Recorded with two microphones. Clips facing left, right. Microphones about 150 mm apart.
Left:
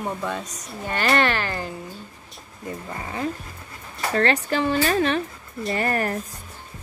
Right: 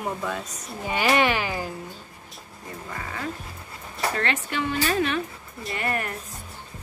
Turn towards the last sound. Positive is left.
turn(degrees=35)  # may be behind; listen again after turning